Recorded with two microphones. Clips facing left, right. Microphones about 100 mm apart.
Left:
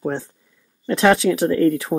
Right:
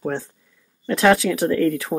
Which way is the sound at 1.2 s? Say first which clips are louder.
Left 3 dB; 30° left (ahead or behind).